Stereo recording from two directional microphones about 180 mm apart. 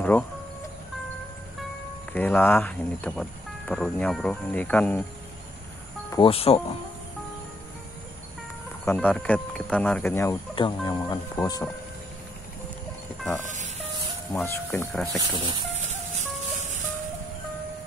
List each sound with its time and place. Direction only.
2.1 s speech: 10° left (ahead or behind)
6.0 s speech: 25° left (ahead or behind)
8.8 s speech: 5° left (ahead or behind)
10.5 s speech: 25° left (ahead or behind)
13.5 s music: 45° right (ahead or behind)
14.3 s speech: 15° left (ahead or behind)
15.1 s speech: 25° right (ahead or behind)